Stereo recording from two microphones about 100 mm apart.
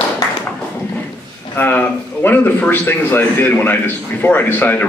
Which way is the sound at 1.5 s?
20° left (ahead or behind).